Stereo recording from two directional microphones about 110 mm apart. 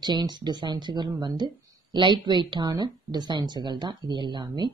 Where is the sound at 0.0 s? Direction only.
40° right (ahead or behind).